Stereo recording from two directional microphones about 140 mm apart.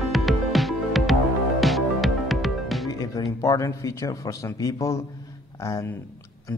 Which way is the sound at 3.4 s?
25° left (ahead or behind).